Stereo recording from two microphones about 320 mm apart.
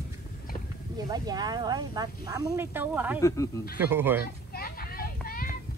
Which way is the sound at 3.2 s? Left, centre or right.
Centre.